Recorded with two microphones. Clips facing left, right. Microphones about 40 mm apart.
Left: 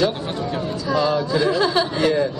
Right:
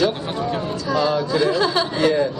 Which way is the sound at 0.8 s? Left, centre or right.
Centre.